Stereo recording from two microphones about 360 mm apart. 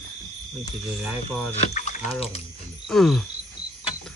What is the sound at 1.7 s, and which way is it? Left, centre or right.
Speech, centre.